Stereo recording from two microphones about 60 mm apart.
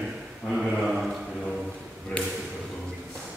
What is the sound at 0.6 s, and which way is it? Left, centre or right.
Speech, centre.